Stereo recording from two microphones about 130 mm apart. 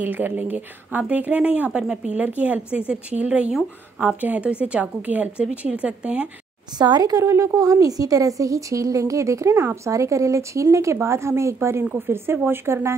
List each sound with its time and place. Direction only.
0.0 s speech: 15° right (ahead or behind)
6.8 s a woman's voice: 30° right (ahead or behind)